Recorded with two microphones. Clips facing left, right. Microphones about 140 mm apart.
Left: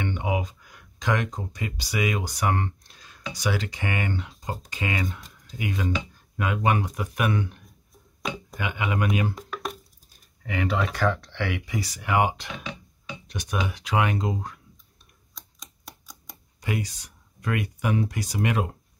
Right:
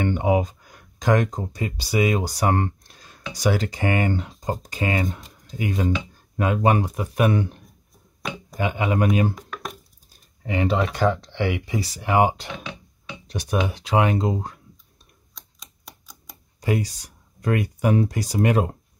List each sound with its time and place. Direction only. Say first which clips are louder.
0.0 s speech: right 7 dB; 45° right (ahead or behind)
10.4 s speech: right 4 dB; 30° right (ahead or behind)
15.3 s typewriter: left 1 dB; centre (ahead or behind)
16.6 s speech: right 6 dB; 35° right (ahead or behind)